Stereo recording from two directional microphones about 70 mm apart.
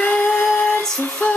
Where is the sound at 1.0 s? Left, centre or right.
Left.